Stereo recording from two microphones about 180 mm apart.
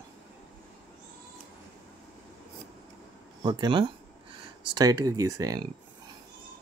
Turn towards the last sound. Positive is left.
turn(degrees=-20)  # may be behind; listen again after turning